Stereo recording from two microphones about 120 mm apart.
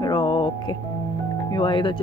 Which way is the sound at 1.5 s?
40° left (ahead or behind).